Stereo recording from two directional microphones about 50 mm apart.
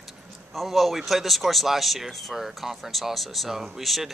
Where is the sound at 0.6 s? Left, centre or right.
Centre.